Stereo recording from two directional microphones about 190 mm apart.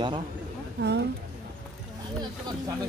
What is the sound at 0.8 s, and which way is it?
Speech, 60° right (ahead or behind).